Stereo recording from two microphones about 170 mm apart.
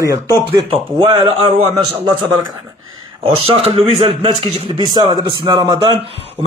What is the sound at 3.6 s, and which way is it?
A man's voice, 35° right (ahead or behind).